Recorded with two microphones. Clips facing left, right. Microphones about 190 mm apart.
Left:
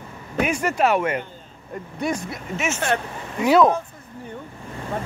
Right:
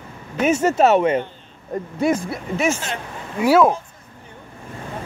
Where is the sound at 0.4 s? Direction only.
25° right (ahead or behind).